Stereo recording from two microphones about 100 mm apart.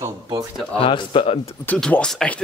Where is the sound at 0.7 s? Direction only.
65° left (ahead or behind).